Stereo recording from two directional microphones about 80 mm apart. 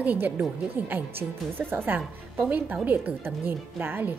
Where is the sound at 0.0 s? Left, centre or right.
Centre.